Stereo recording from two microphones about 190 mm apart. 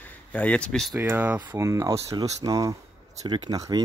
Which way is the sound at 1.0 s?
10° right (ahead or behind).